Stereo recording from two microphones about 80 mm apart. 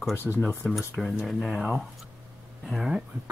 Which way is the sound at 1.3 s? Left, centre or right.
Centre.